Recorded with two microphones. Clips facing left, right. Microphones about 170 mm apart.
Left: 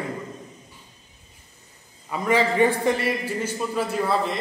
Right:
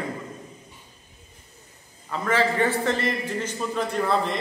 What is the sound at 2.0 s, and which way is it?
A man's voice, 15° left (ahead or behind).